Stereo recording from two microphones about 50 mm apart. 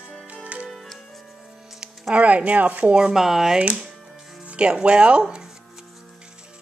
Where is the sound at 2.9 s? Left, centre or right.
Centre.